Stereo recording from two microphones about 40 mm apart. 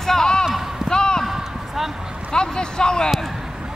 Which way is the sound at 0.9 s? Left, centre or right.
Centre.